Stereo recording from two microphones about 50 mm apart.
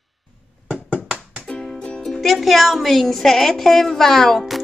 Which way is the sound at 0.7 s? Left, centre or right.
Right.